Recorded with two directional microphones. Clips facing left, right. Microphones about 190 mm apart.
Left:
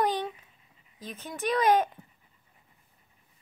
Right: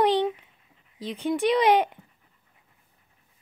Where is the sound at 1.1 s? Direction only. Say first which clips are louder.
Right 7 dB; 15° right (ahead or behind).